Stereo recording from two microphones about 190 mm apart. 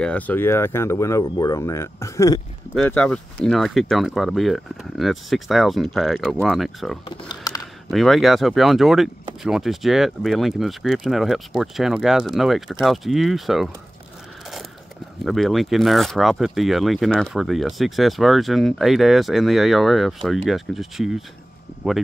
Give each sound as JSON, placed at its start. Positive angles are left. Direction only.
{"t": 0.0, "sound": "speech", "side_deg": 10}
{"t": 2.7, "sound": "speech", "side_deg": 5}
{"t": 7.1, "sound": "a sound", "side_deg": 20}
{"t": 7.9, "sound": "speech", "side_deg": 0}
{"t": 15.2, "sound": "speech", "side_deg": 0}